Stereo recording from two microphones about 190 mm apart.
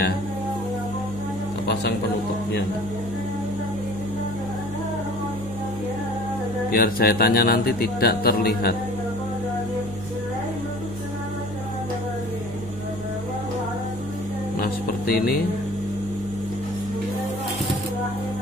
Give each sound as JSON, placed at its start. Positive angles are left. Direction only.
{"t": 6.7, "sound": "speech", "side_deg": 50}
{"t": 14.6, "sound": "music", "side_deg": 55}